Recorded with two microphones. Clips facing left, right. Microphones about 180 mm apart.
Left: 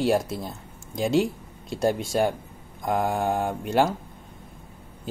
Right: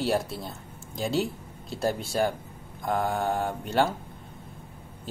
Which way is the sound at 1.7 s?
Centre (ahead or behind).